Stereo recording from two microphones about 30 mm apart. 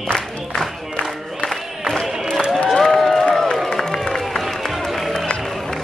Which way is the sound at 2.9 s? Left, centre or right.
Centre.